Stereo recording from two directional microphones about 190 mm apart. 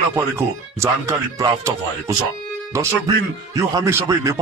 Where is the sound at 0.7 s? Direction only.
20° right (ahead or behind).